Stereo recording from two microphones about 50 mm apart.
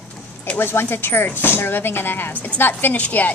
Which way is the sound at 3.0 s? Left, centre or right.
Left.